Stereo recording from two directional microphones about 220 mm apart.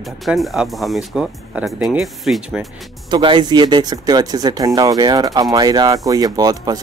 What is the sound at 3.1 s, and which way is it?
Speech, 20° right (ahead or behind).